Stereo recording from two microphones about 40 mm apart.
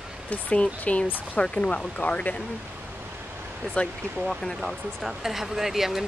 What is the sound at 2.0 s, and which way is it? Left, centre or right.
Speech, left.